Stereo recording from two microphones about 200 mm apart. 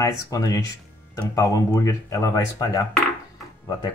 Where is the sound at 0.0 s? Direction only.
15° left (ahead or behind).